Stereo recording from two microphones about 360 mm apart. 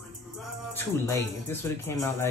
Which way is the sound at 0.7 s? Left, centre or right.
Centre.